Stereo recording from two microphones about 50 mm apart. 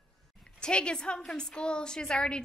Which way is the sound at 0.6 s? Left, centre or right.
Centre.